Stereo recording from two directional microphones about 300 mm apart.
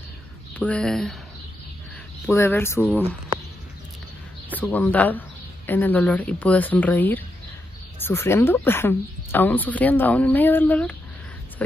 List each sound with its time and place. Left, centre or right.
0.6 s speech: centre
2.2 s speech: centre
4.6 s speech: centre